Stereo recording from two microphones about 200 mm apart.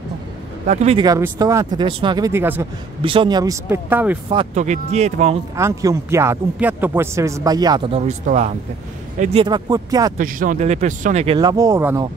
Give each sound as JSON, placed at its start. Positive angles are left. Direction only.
{"t": 0.7, "sound": "speech", "side_deg": -35}
{"t": 1.0, "sound": "speech", "side_deg": -20}
{"t": 3.0, "sound": "speech", "side_deg": -25}
{"t": 4.6, "sound": "speech", "side_deg": -35}
{"t": 5.6, "sound": "speech", "side_deg": -15}
{"t": 10.1, "sound": "speech", "side_deg": -40}
{"t": 11.3, "sound": "speech", "side_deg": -20}